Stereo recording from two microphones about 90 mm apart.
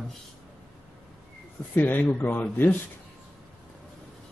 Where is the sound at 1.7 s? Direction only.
20° left (ahead or behind).